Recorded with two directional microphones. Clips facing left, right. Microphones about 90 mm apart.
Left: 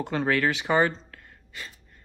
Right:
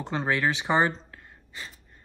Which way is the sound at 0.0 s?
20° right (ahead or behind).